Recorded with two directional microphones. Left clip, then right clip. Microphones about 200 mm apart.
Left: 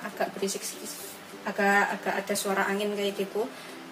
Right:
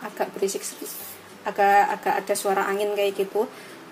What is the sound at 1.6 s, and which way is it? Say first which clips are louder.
Speech: right 6 dB; 40° right (ahead or behind).